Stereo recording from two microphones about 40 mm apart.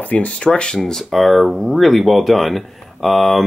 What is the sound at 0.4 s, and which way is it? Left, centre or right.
Speech, left.